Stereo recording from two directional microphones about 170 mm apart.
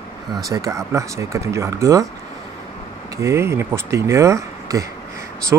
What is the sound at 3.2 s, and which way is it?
Speech, 15° right (ahead or behind).